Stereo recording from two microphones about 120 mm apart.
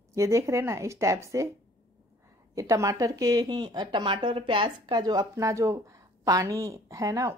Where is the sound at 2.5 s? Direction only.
25° right (ahead or behind).